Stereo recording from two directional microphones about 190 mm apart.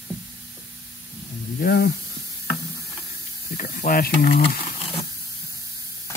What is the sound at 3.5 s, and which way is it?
Snake, 45° left (ahead or behind).